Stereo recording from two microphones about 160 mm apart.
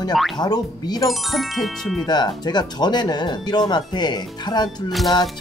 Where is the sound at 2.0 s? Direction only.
25° left (ahead or behind).